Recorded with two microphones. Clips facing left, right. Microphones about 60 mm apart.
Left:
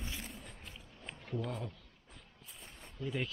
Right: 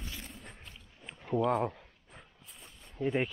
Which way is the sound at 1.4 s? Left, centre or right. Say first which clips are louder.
Right 14 dB; right.